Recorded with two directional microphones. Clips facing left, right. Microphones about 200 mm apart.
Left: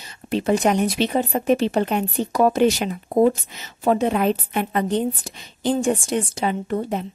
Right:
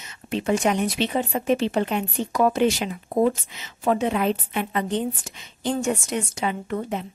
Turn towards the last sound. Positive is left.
turn(degrees=35)  # may be behind; listen again after turning